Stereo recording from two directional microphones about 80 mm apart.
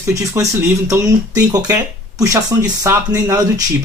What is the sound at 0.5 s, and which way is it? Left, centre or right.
Speech, right.